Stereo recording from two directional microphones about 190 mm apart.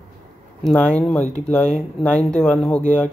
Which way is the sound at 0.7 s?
5° left (ahead or behind).